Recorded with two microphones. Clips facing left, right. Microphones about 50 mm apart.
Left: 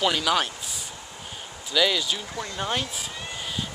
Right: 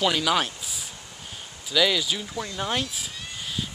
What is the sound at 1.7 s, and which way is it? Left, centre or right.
Speech, centre.